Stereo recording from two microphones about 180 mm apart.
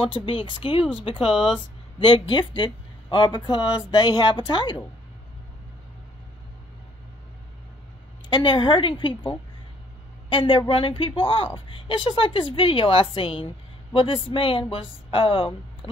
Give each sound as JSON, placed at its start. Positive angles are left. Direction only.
{"t": 0.0, "sound": "speech", "side_deg": 30}
{"t": 8.3, "sound": "speech", "side_deg": 25}